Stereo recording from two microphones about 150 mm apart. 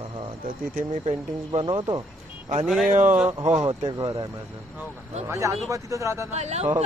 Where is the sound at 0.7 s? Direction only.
65° right (ahead or behind).